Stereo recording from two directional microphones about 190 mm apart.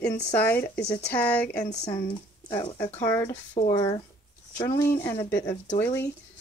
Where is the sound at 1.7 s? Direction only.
20° left (ahead or behind).